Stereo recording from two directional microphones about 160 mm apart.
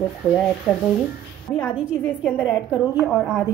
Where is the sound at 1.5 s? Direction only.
15° left (ahead or behind).